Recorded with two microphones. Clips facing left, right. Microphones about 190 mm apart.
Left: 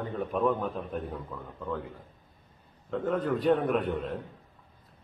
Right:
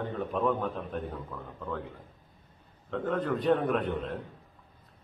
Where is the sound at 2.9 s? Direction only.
Centre (ahead or behind).